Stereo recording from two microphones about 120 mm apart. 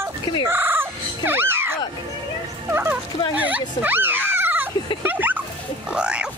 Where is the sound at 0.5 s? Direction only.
20° right (ahead or behind).